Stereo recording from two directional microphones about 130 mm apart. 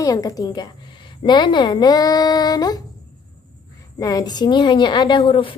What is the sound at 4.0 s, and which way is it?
A woman's voice, 30° left (ahead or behind).